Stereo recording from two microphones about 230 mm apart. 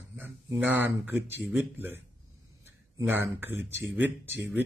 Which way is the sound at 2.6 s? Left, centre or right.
Centre.